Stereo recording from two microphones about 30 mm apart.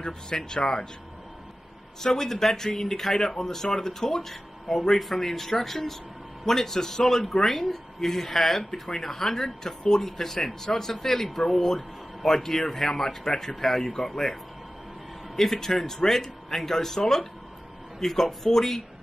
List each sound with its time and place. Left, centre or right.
0.3 s speech: left
2.0 s speech: centre